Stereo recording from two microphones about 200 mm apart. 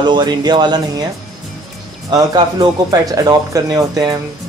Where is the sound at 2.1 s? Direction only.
20° right (ahead or behind).